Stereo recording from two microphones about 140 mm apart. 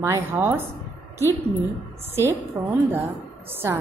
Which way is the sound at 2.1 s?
15° right (ahead or behind).